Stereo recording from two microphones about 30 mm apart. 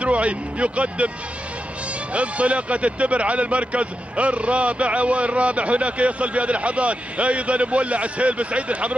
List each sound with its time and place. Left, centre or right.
0.0 s speech: right
2.1 s speech: right